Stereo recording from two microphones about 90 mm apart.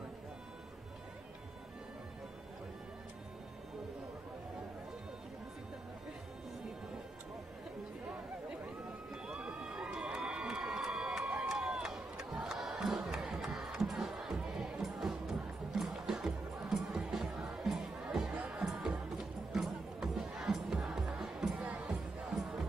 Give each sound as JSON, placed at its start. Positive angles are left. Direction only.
{"t": 9.1, "sound": "crowd", "side_deg": -10}
{"t": 18.4, "sound": "music", "side_deg": -10}